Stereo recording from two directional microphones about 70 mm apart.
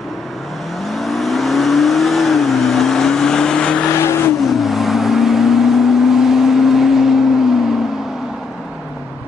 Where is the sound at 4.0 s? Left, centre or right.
Left.